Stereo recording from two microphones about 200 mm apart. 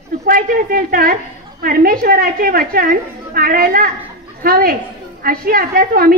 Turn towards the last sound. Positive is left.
turn(degrees=-50)  # may be behind; listen again after turning